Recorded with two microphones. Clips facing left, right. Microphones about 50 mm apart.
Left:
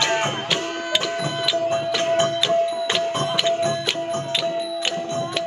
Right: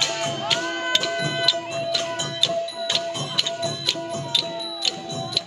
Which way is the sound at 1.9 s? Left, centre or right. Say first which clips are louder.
Left 8 dB; left.